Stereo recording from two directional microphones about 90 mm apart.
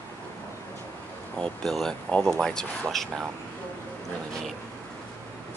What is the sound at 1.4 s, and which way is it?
Speech, 5° left (ahead or behind).